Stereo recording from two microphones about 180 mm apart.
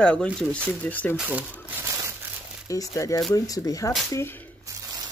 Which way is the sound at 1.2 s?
10° right (ahead or behind).